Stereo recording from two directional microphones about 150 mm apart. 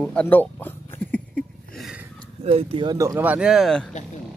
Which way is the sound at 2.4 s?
40° right (ahead or behind).